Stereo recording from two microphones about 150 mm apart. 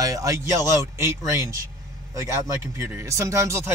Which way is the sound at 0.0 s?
25° right (ahead or behind).